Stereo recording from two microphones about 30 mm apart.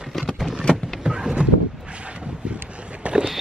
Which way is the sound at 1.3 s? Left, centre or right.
Right.